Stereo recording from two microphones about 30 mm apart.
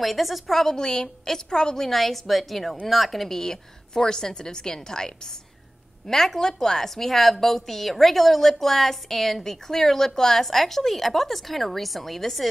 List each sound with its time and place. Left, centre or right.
0.0 s speech: centre
0.7 s a woman's voice: left
1.9 s speech: centre
3.3 s a woman's voice: centre
6.0 s a woman's voice: centre